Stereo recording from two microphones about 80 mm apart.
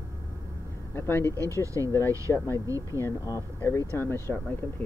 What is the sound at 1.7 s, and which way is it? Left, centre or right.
Speech, left.